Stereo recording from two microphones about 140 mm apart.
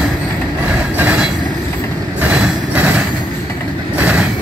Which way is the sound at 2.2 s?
10° right (ahead or behind).